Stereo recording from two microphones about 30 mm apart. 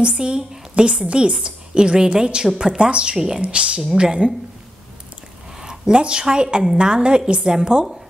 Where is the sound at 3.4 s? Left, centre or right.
Right.